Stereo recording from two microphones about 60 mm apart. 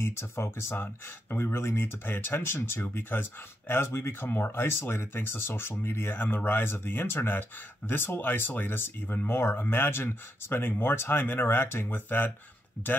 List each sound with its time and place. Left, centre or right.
0.0 s speech: left
12.8 s speech: left